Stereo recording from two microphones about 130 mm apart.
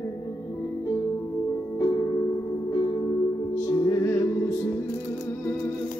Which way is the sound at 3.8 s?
25° left (ahead or behind).